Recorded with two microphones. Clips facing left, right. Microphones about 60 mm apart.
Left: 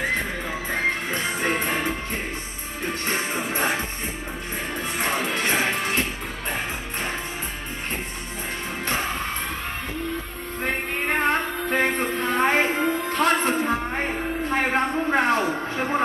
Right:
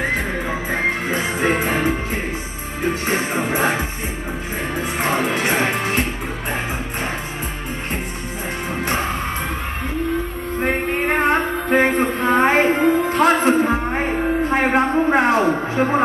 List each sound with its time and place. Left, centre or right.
0.5 s music: centre
2.8 s music: centre
8.8 s music: centre
11.1 s music: centre
11.9 s a sound: centre
12.3 s music: centre
13.3 s music: centre
13.8 s music: centre
14.6 s a sound: centre
14.9 s a sound: right